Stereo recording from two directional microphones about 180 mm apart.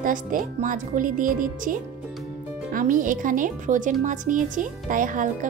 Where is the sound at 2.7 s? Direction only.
45° right (ahead or behind).